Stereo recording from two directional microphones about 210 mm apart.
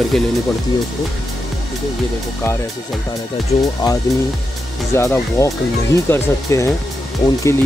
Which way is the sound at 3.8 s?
20° left (ahead or behind).